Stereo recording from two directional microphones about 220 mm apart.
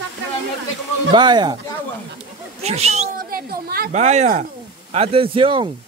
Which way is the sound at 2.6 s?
30° right (ahead or behind).